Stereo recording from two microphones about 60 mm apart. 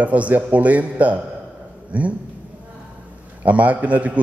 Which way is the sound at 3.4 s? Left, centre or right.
Right.